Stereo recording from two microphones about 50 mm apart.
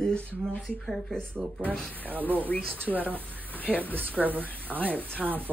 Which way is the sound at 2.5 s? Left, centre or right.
Left.